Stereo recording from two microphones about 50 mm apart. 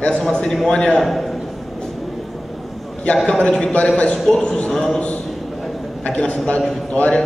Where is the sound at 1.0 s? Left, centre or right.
Centre.